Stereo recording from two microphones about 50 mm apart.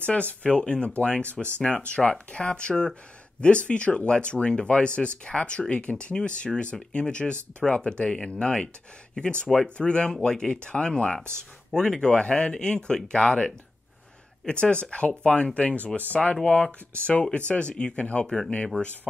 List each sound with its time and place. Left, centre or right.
0.0 s speech: left; by 18.5 s centre